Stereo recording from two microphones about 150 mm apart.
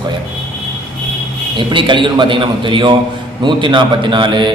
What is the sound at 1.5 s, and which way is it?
A man's voice, 30° right (ahead or behind).